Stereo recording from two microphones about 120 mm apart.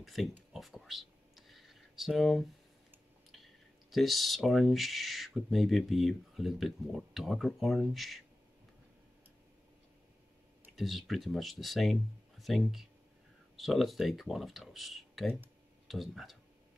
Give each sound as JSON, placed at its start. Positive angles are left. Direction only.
{"t": 0.0, "sound": "speech", "side_deg": 0}
{"t": 0.5, "sound": "a sound", "side_deg": 0}
{"t": 3.9, "sound": "speech", "side_deg": 0}
{"t": 10.8, "sound": "speech", "side_deg": 0}